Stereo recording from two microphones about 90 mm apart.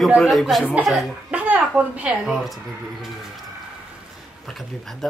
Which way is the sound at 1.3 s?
15° right (ahead or behind).